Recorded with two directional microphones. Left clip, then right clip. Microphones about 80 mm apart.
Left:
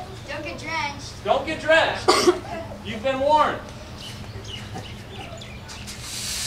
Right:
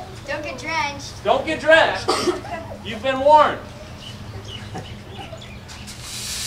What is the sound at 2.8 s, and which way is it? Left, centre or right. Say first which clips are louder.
Speech: right 5 dB; right.